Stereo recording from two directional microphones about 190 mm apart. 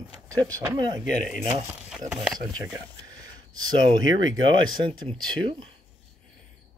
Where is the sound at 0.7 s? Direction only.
25° right (ahead or behind).